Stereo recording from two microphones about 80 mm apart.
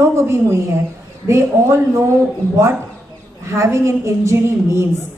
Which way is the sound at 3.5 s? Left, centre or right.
Right.